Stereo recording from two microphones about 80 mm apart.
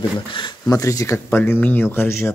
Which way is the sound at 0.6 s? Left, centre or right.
Left.